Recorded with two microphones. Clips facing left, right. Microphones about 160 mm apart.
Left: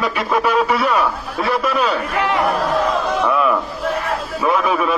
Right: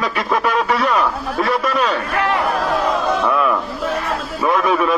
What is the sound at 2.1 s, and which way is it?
Speech, 20° left (ahead or behind).